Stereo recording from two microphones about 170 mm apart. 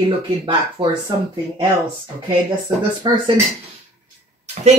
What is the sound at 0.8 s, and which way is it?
Speech, 30° right (ahead or behind).